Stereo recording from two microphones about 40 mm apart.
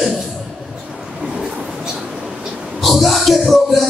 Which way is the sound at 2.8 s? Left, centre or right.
Centre.